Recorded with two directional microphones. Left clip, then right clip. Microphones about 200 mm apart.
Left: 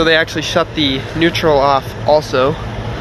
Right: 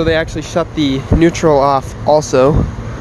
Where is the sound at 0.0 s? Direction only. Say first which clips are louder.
Left 2 dB; 15° right (ahead or behind).